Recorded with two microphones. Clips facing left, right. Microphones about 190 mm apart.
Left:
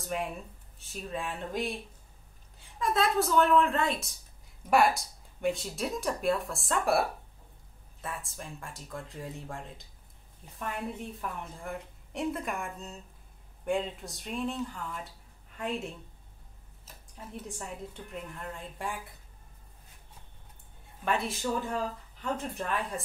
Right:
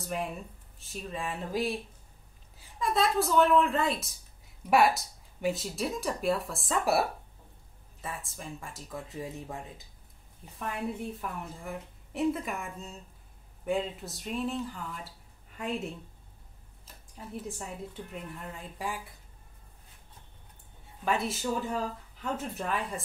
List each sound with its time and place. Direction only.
0.0 s speech: centre (ahead or behind)
2.8 s a woman's voice: centre (ahead or behind)
17.4 s speech: centre (ahead or behind)
21.0 s speech: centre (ahead or behind)